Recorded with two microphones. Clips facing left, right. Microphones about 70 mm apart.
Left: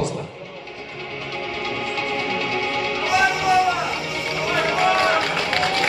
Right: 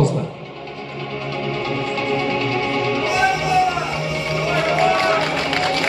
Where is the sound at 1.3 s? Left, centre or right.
Right.